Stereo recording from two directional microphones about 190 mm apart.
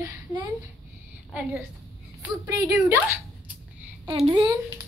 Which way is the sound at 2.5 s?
15° right (ahead or behind).